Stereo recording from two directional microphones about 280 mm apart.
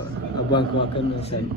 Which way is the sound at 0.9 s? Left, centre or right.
Left.